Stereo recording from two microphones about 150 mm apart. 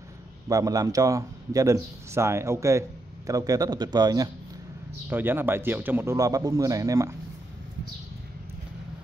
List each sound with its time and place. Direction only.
0.5 s speech: 25° right (ahead or behind)
5.1 s a man's voice: 15° right (ahead or behind)